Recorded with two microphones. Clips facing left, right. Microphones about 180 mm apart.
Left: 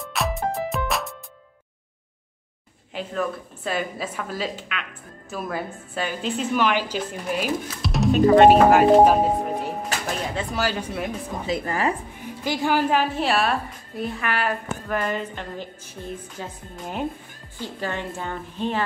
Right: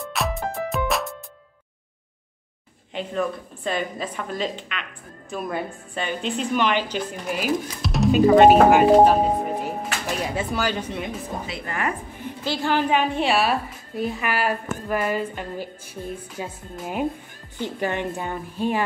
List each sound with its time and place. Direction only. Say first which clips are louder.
0.0 s music: left 1 dB; centre (ahead or behind)
2.9 s a woman's voice: right 1 dB; 5° left (ahead or behind)
7.6 s music: right 1 dB; centre (ahead or behind)
8.3 s a woman's voice: even; centre (ahead or behind)
11.4 s speech: left 7 dB; 35° left (ahead or behind)
12.4 s a woman's voice: left 1 dB; 15° left (ahead or behind)
12.8 s a woman's voice: right 1 dB; centre (ahead or behind)
17.6 s a woman's voice: right 4 dB; 15° right (ahead or behind)